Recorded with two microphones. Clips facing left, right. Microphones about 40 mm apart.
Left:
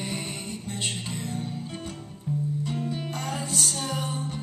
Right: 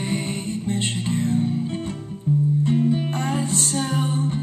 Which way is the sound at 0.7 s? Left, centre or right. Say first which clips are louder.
Right 8 dB; right.